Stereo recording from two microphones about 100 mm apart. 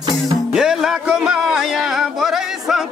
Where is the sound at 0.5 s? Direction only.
5° right (ahead or behind).